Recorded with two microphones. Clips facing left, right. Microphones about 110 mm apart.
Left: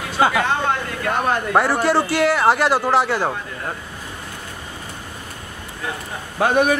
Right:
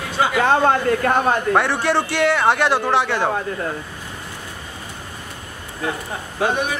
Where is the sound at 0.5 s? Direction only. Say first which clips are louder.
Right 6 dB; 45° right (ahead or behind).